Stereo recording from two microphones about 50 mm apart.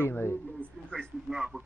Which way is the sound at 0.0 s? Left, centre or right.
Left.